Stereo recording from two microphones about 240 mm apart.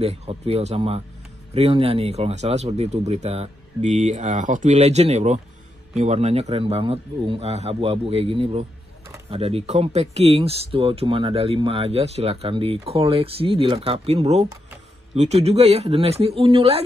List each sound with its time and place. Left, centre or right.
0.0 s speech: right